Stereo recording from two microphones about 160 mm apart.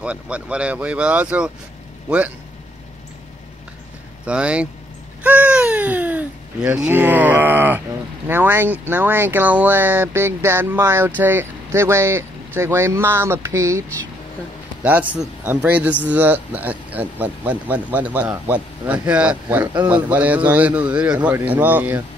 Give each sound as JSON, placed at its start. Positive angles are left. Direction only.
{"t": 0.0, "sound": "a man's voice", "side_deg": -5}
{"t": 4.3, "sound": "speech", "side_deg": -5}
{"t": 5.2, "sound": "a sound", "side_deg": -10}
{"t": 8.3, "sound": "speech", "side_deg": -15}